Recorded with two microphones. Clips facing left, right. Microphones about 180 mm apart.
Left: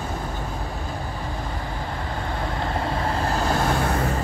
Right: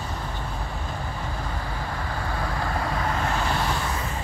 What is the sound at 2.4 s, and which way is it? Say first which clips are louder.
Vehicle: left 2 dB; 25° left (ahead or behind).